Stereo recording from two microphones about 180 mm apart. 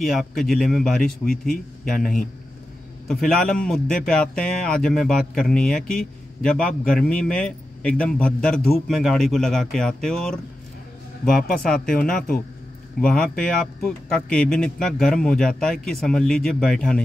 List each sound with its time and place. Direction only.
0.0 s a man's voice: centre (ahead or behind)
3.1 s a man's voice: centre (ahead or behind)
11.4 s speech: 55° left (ahead or behind)
13.0 s a man's voice: 5° left (ahead or behind)